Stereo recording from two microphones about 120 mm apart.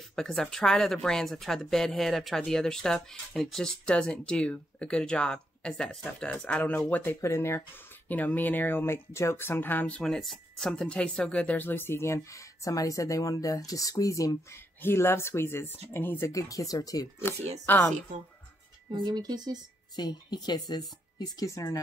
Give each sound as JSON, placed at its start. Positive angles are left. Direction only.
{"t": 0.1, "sound": "speech", "side_deg": 5}
{"t": 7.2, "sound": "speech", "side_deg": 25}
{"t": 17.6, "sound": "speech", "side_deg": 15}
{"t": 18.9, "sound": "speech", "side_deg": -35}
{"t": 20.0, "sound": "speech", "side_deg": 35}